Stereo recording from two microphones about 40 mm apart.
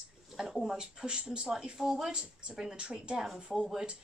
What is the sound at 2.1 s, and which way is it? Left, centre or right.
Speech, right.